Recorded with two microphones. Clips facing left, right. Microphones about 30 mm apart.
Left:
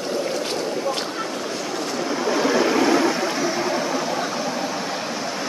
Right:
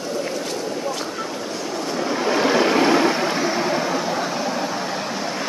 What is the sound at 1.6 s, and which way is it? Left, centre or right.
Train, left.